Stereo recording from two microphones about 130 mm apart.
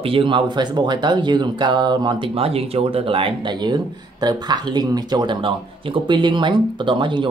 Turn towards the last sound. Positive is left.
turn(degrees=-40)  # may be behind; listen again after turning